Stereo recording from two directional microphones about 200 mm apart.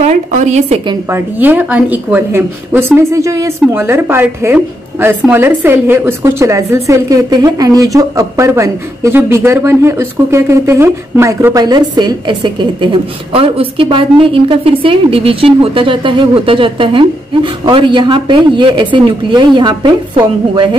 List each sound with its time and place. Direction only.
0.0 s a woman's voice: 35° right (ahead or behind)
1.1 s a woman's voice: 10° right (ahead or behind)